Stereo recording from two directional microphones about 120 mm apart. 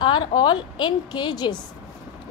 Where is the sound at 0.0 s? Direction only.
40° left (ahead or behind).